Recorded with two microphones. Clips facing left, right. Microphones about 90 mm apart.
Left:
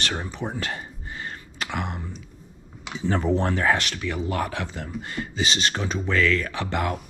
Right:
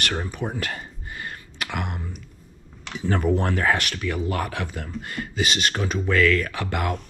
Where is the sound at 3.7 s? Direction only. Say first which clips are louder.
Right 1 dB; 55° right (ahead or behind).